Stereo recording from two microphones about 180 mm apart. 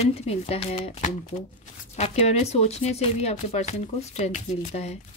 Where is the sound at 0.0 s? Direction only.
35° left (ahead or behind).